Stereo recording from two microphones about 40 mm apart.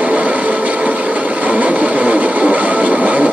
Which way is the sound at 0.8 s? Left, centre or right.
Right.